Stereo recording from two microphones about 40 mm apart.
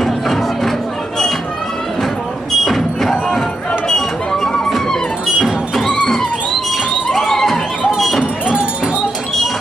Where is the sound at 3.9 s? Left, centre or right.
Centre.